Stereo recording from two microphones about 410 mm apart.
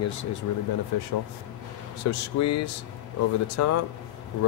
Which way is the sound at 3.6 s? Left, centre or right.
Left.